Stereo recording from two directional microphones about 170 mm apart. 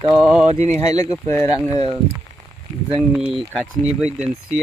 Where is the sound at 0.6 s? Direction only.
15° left (ahead or behind).